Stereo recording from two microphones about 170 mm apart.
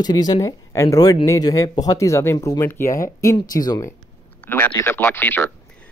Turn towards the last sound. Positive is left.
turn(degrees=10)  # may be behind; listen again after turning